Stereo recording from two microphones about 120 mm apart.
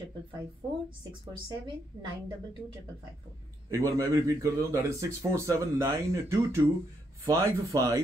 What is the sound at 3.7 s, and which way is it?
A man's voice, 25° right (ahead or behind).